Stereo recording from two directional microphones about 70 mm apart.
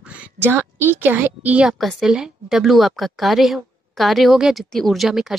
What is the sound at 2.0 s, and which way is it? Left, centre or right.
A woman's voice, centre.